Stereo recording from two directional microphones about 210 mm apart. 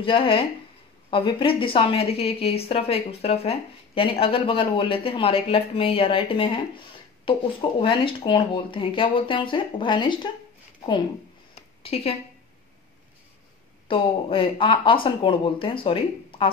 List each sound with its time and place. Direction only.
0.0 s speech: 25° left (ahead or behind)
7.8 s speech: 25° left (ahead or behind)
11.5 s a sound: 30° left (ahead or behind)
13.8 s speech: 25° left (ahead or behind)